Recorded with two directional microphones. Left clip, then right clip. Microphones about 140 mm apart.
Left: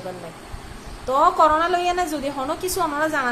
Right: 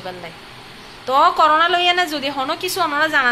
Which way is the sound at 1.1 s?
5° left (ahead or behind).